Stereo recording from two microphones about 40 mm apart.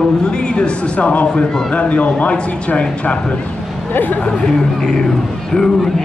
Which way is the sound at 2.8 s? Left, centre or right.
Left.